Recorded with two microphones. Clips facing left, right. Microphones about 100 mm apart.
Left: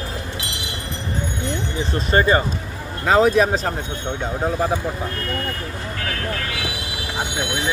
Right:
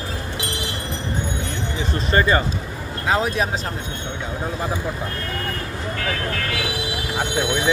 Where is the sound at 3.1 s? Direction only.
45° left (ahead or behind).